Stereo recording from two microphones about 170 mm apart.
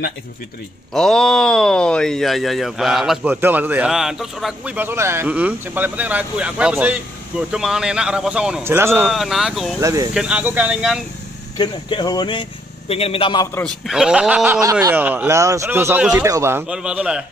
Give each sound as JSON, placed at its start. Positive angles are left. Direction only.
{"t": 0.9, "sound": "speech", "side_deg": 5}
{"t": 9.1, "sound": "speech", "side_deg": 0}
{"t": 9.8, "sound": "speech", "side_deg": -20}
{"t": 10.1, "sound": "speech", "side_deg": -5}
{"t": 11.5, "sound": "speech", "side_deg": 25}
{"t": 13.6, "sound": "speech", "side_deg": 0}
{"t": 16.6, "sound": "speech", "side_deg": -5}